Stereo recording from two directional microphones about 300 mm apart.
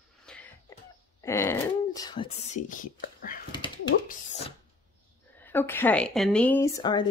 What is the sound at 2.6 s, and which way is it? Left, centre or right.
Speech, left.